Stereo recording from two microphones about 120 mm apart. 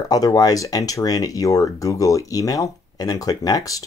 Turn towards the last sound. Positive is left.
turn(degrees=30)  # may be behind; listen again after turning